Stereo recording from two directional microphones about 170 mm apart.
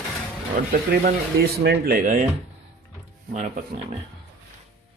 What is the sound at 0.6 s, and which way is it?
Speech, 70° right (ahead or behind).